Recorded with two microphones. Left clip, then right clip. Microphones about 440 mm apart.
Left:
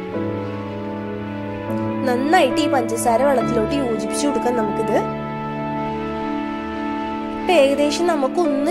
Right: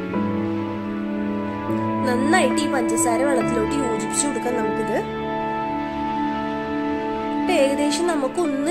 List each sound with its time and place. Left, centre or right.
2.0 s speech: centre
7.4 s music: centre